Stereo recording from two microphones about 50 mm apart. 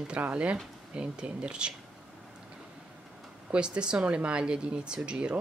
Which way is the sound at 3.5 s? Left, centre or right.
Centre.